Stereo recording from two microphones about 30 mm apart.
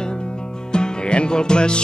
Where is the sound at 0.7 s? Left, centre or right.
Left.